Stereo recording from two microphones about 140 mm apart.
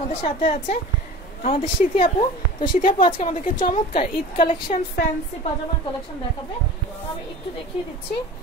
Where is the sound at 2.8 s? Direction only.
35° left (ahead or behind).